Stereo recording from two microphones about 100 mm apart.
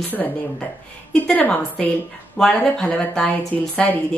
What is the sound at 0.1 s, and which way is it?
A woman's voice, 15° left (ahead or behind).